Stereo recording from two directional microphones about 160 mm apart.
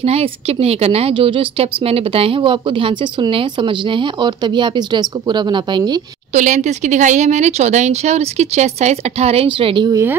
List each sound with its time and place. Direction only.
0.0 s a woman's voice: 40° right (ahead or behind)
6.3 s speech: 50° right (ahead or behind); by 9.9 s 30° right (ahead or behind)